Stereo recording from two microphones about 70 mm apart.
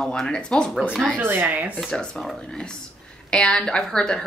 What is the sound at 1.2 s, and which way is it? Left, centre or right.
Speech, right.